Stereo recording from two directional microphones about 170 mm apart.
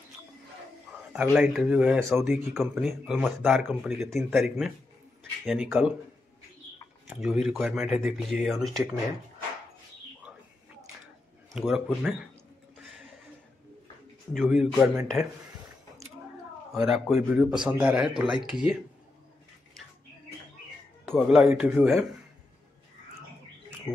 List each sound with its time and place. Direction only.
1.1 s speech: 5° right (ahead or behind)
7.1 s speech: 5° right (ahead or behind)
10.3 s a sound: 5° right (ahead or behind)
11.5 s speech: 5° right (ahead or behind)
14.3 s speech: centre (ahead or behind)
16.7 s speech: centre (ahead or behind)
21.1 s speech: centre (ahead or behind)